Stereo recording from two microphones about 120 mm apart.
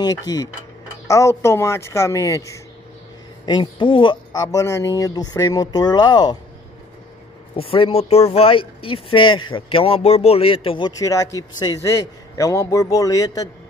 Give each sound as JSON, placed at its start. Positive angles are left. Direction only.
{"t": 0.0, "sound": "a man's voice", "side_deg": 30}
{"t": 3.4, "sound": "speech", "side_deg": 40}
{"t": 7.5, "sound": "speech", "side_deg": 50}
{"t": 10.9, "sound": "a man's voice", "side_deg": 30}